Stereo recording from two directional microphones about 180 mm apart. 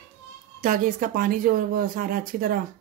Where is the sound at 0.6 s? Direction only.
50° right (ahead or behind).